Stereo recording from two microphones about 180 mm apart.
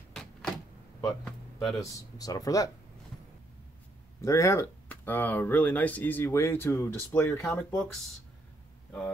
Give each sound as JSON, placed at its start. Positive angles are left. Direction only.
{"t": 0.1, "sound": "a sound", "side_deg": 0}
{"t": 1.8, "sound": "speech", "side_deg": 20}
{"t": 4.2, "sound": "speech", "side_deg": 15}